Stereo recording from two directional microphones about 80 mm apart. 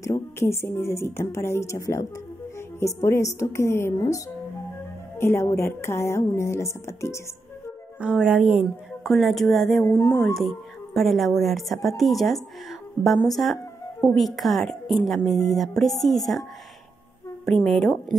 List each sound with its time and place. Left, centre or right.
0.4 s a woman's voice: left
3.9 s speech: left
5.1 s a woman's voice: left
8.0 s speech: centre
9.0 s a woman's voice: centre
9.8 s a woman's voice: left
10.3 s a woman's voice: centre
17.5 s a woman's voice: centre